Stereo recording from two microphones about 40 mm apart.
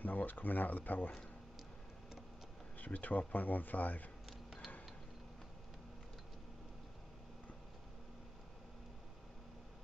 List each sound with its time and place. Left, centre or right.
0.0 s speech: left
2.8 s speech: left